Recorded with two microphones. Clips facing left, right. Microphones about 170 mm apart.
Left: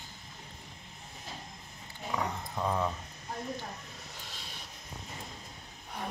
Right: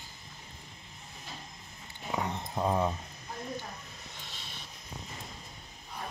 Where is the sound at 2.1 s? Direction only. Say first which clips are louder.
Right 1 dB; 25° right (ahead or behind).